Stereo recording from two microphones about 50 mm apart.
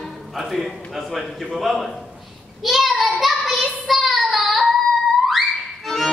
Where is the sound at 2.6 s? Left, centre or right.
Centre.